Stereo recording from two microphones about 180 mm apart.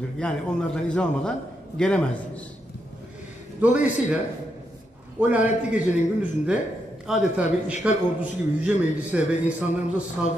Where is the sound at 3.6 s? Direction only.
45° left (ahead or behind).